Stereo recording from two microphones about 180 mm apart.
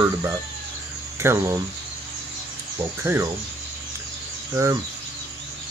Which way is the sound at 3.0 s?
15° right (ahead or behind).